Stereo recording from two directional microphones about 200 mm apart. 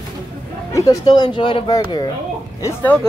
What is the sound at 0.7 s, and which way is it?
Speech, 20° left (ahead or behind).